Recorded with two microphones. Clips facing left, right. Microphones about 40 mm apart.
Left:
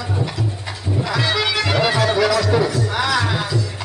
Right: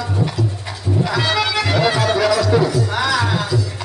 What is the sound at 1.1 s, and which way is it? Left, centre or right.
Music, centre.